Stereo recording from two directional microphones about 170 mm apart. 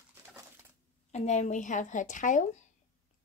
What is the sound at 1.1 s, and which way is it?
A woman's voice, 45° left (ahead or behind).